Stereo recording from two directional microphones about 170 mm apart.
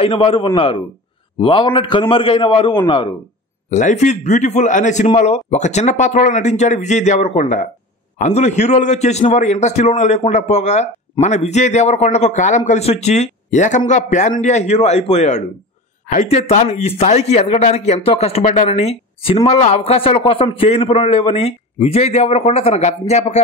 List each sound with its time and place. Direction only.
0.0 s a man's voice: 30° left (ahead or behind)
3.7 s a man's voice: 45° left (ahead or behind)